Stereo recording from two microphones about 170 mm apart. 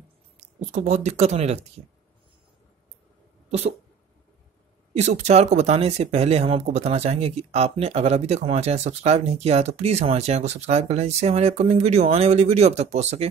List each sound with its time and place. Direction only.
0.4 s speech: 45° right (ahead or behind)
3.4 s cat: 40° right (ahead or behind)
4.9 s speech: 40° right (ahead or behind)